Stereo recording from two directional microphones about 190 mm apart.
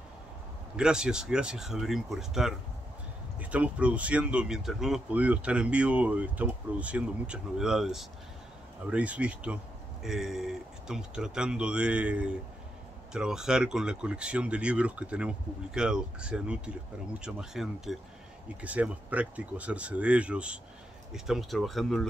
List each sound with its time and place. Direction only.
0.7 s speech: 5° right (ahead or behind)